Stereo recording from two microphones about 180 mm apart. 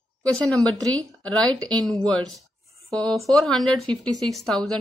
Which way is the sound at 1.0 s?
5° left (ahead or behind).